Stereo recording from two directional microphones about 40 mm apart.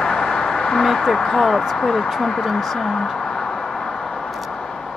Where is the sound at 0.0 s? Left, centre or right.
Centre.